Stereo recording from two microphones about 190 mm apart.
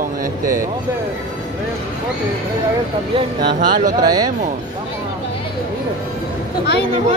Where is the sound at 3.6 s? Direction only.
45° right (ahead or behind).